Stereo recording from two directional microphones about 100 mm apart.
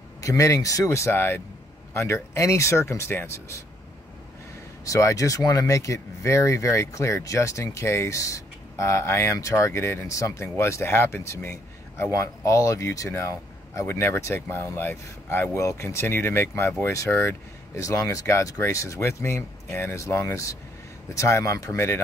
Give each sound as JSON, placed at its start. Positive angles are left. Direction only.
{"t": 0.2, "sound": "speech", "side_deg": 30}
{"t": 4.8, "sound": "speech", "side_deg": 35}